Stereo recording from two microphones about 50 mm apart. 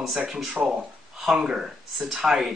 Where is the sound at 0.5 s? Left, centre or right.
Right.